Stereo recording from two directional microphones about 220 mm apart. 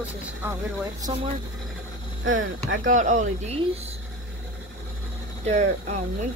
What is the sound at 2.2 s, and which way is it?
Speech, 60° right (ahead or behind).